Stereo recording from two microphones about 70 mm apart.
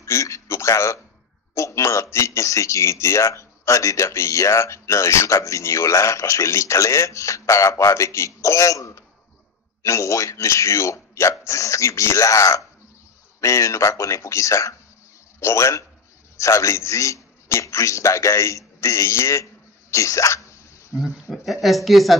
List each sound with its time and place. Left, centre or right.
0.0 s a sound: left
1.5 s a man's voice: left
21.0 s speech: centre